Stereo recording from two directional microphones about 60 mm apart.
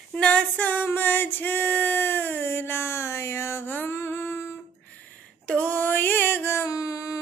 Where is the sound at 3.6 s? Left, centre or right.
Left.